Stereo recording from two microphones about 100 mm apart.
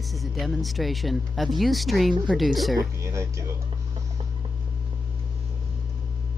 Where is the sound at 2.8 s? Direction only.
30° right (ahead or behind).